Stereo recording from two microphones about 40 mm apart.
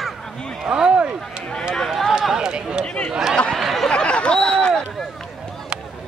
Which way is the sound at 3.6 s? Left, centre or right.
Centre.